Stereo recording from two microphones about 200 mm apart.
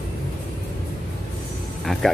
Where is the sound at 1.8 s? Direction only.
Centre (ahead or behind).